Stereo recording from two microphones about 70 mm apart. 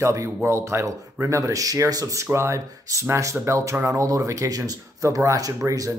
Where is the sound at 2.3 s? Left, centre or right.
Right.